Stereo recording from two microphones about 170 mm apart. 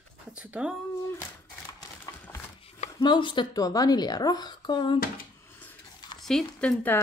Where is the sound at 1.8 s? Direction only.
15° left (ahead or behind).